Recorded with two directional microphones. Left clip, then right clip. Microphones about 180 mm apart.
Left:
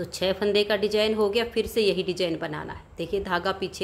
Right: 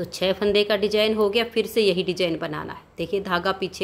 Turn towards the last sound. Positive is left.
turn(degrees=-10)  # may be behind; listen again after turning